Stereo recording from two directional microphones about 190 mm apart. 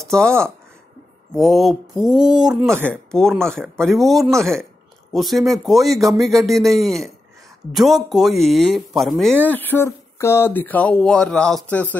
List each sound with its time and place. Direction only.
0.0 s speech: 5° left (ahead or behind)